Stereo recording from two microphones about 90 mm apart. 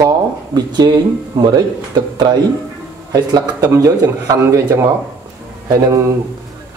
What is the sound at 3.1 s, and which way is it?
Speech, 40° right (ahead or behind).